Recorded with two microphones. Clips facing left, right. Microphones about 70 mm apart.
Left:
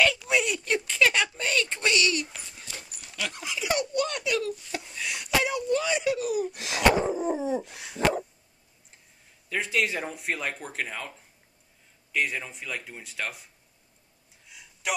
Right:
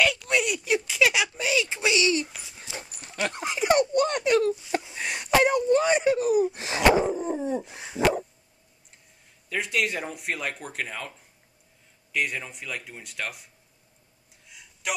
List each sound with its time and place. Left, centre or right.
0.0 s a sound: centre; by 2.2 s right
2.2 s dog: centre
2.8 s dog: right
4.9 s a sound: right
6.8 s dog: centre
7.1 s dog: centre
7.9 s dog: centre
9.5 s speech: centre
14.5 s a sound: centre